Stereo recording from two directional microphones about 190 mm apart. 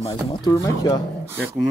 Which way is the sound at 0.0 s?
25° left (ahead or behind).